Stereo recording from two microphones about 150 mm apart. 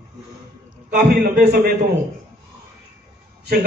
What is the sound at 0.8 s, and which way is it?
Speech, 80° right.